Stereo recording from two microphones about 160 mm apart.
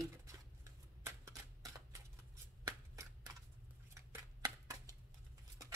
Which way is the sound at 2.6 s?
20° right (ahead or behind).